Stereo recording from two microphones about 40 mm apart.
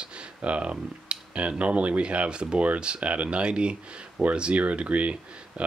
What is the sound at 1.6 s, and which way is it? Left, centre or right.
Speech, right.